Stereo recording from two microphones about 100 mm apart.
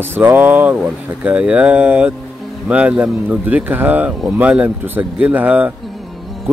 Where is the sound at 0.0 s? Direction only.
20° right (ahead or behind).